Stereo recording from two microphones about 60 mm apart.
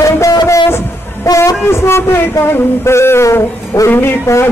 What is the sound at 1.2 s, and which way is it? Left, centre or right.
Speech, left.